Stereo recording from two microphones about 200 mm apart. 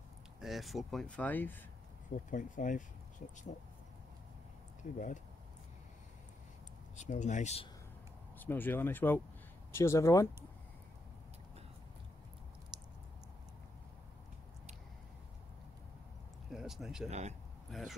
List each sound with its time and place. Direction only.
0.4 s speech: centre (ahead or behind)
2.3 s speech: 40° left (ahead or behind)
4.9 s speech: 40° left (ahead or behind)
7.0 s speech: 35° left (ahead or behind)
8.4 s speech: 10° left (ahead or behind)
12.7 s a sound: 20° right (ahead or behind)
16.4 s speech: centre (ahead or behind)
17.1 s speech: 35° right (ahead or behind)
17.6 s speech: centre (ahead or behind)